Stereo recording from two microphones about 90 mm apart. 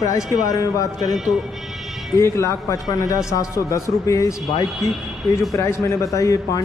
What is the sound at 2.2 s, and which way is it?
A man's voice, 30° left (ahead or behind).